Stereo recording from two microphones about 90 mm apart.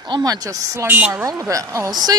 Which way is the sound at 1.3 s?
35° right (ahead or behind).